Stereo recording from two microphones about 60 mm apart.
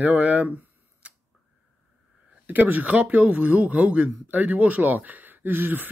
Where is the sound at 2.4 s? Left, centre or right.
Right.